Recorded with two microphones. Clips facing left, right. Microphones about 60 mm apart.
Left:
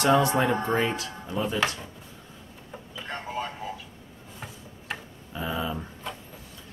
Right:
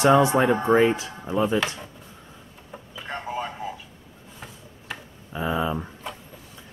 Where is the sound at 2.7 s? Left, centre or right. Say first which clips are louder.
Right 2 dB; centre.